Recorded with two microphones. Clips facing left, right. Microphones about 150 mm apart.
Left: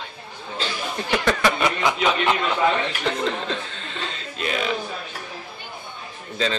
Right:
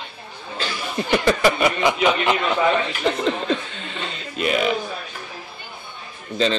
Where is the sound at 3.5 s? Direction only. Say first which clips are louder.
Right 5 dB; 5° right (ahead or behind).